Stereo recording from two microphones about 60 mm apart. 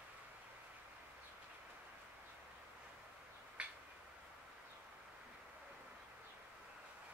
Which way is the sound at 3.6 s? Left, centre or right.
Centre.